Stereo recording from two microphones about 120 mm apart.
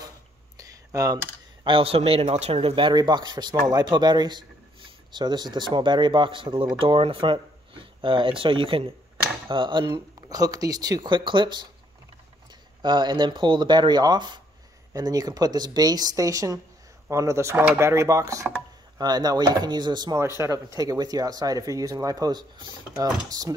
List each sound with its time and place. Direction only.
0.6 s a sound: 30° right (ahead or behind)
1.6 s speech: 50° right (ahead or behind)
20.2 s speech: 25° right (ahead or behind)